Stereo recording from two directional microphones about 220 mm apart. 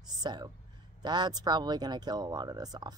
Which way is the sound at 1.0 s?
20° right (ahead or behind).